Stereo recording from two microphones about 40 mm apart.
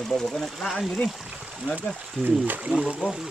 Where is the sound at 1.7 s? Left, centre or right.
Right.